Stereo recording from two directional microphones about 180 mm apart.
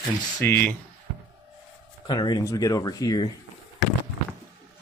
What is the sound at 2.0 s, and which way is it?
Speech, 25° left (ahead or behind).